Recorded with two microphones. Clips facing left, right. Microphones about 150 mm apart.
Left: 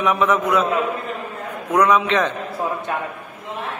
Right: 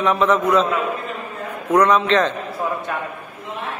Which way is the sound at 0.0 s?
10° left (ahead or behind).